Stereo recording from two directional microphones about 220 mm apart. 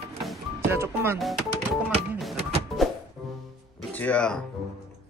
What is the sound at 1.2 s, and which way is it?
Music, centre (ahead or behind).